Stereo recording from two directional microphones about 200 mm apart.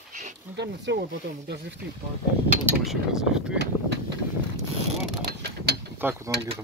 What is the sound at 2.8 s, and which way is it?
Speech, 5° right (ahead or behind).